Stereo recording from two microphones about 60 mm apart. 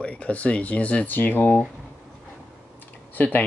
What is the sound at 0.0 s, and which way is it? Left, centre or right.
Speech, centre.